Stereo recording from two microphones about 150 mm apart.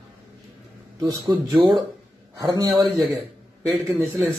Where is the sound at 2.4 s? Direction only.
25° right (ahead or behind).